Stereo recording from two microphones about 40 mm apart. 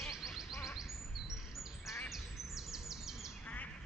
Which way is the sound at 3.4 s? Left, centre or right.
Left.